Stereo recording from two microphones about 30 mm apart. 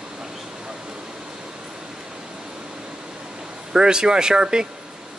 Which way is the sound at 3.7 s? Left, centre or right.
Right.